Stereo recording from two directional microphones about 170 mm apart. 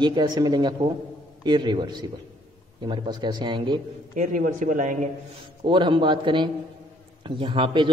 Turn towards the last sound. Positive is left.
turn(degrees=-30)  # may be behind; listen again after turning